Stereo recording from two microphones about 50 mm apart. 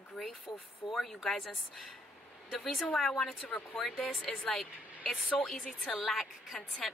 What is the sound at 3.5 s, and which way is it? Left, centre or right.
Speech, left.